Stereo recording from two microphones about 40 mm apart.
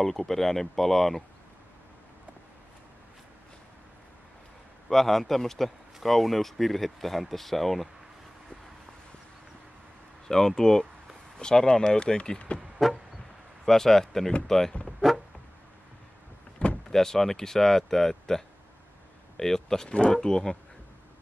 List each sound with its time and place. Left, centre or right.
0.0 s speech: centre
4.8 s speech: centre
10.2 s speech: centre
12.5 s speech: left
13.7 s speech: centre
15.0 s a sound: centre
16.6 s vehicle: left
16.9 s speech: centre
19.9 s speech: left